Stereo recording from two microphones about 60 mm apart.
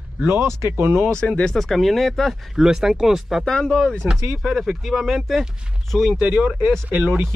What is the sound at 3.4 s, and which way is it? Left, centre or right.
Speech, centre.